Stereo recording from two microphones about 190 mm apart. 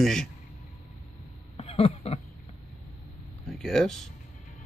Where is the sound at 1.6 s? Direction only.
30° left (ahead or behind).